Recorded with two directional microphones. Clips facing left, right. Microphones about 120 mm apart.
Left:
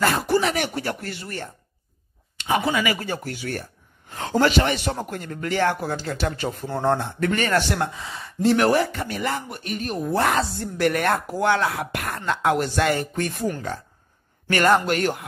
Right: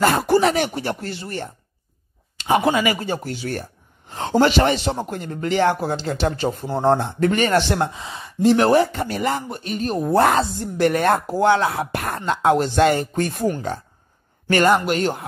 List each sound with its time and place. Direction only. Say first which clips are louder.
0.1 s speech: right 4 dB; 40° right (ahead or behind)
0.6 s speech: right 3 dB; 25° right (ahead or behind)
2.3 s a sound: right 4 dB; 35° right (ahead or behind)
2.7 s speech: right 3 dB; 25° right (ahead or behind)
10.3 s speech: right 3 dB; 25° right (ahead or behind)
14.8 s speech: right 2 dB; 25° right (ahead or behind)